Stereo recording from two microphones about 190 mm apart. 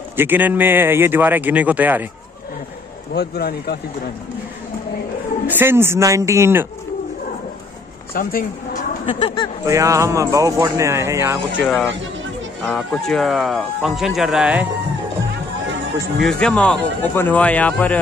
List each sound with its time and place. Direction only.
0.1 s a man's voice: 10° right (ahead or behind)
3.2 s speech: 55° left (ahead or behind)
5.5 s a man's voice: 10° right (ahead or behind)
8.1 s speech: 50° left (ahead or behind)
9.0 s speech: 25° left (ahead or behind)
9.7 s a man's voice: 15° right (ahead or behind)
11.6 s speech: 5° left (ahead or behind)
16.2 s speech: 5° left (ahead or behind)